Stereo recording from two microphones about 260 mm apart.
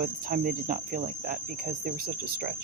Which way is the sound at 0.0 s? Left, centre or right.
Right.